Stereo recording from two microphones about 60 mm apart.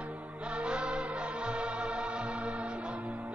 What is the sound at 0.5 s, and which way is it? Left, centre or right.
Music, centre.